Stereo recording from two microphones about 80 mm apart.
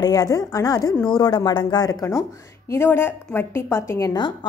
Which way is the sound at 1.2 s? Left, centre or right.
Left.